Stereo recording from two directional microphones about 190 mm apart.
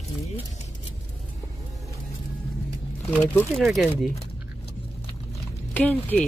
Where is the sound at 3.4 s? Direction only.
Centre (ahead or behind).